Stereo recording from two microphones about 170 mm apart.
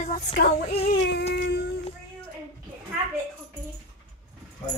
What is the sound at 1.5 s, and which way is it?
Child singing, 80° left.